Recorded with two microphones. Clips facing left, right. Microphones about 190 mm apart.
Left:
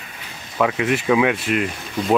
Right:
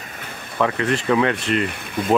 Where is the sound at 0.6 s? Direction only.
10° left (ahead or behind).